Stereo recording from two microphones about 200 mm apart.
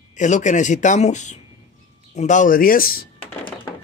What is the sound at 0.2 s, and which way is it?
Speech, 35° left (ahead or behind).